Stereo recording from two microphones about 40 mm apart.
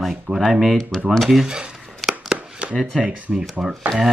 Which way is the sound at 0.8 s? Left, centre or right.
Centre.